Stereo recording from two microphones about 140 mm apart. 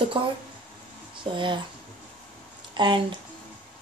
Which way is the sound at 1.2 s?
40° right (ahead or behind).